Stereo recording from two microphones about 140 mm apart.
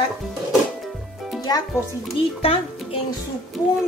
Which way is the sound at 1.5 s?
30° left (ahead or behind).